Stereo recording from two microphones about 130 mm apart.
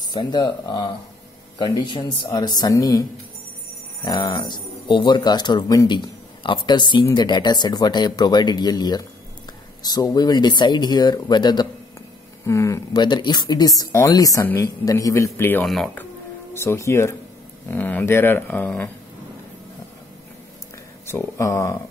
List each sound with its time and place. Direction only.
0.0 s speech: 35° left (ahead or behind)
4.0 s speech: 35° left (ahead or behind)
12.4 s speech: 25° left (ahead or behind)
15.6 s speech: centre (ahead or behind)
16.5 s speech: 20° left (ahead or behind)
21.1 s speech: 20° left (ahead or behind)